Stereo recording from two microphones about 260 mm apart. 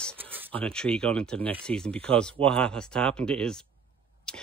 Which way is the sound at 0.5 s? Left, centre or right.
Centre.